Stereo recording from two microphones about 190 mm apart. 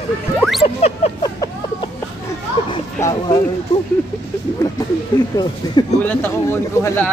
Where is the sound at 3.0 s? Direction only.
20° left (ahead or behind).